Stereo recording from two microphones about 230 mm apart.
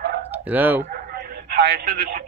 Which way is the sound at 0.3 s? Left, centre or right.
Centre.